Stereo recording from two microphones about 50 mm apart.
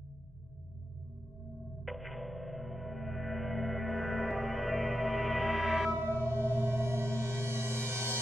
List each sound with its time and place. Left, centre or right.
1.9 s gong: centre
5.9 s music: right